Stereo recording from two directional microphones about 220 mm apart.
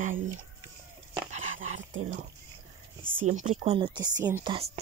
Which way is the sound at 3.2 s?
35° right (ahead or behind).